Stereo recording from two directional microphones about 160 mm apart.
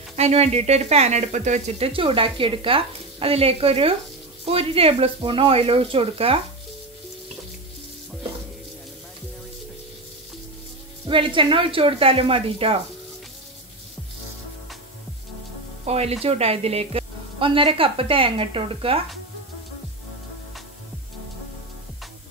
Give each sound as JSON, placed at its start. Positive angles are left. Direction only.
{"t": 0.1, "sound": "speech", "side_deg": -40}
{"t": 11.1, "sound": "speech", "side_deg": -30}
{"t": 15.8, "sound": "speech", "side_deg": -40}